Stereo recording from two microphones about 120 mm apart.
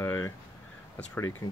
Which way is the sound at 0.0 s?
20° left (ahead or behind).